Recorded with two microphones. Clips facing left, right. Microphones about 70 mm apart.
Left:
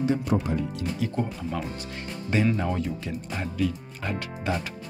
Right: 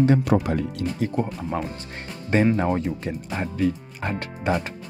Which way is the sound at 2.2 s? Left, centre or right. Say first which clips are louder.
Right 5 dB; right.